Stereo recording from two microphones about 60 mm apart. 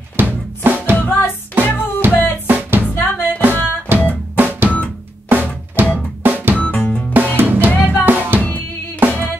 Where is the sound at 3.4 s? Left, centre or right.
Right.